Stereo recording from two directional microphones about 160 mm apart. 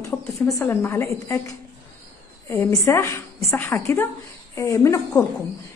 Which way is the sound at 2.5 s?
20° left (ahead or behind).